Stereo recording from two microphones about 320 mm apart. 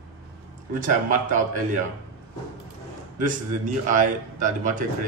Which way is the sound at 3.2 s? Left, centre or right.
Right.